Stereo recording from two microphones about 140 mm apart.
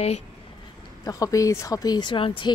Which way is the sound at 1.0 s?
25° left (ahead or behind).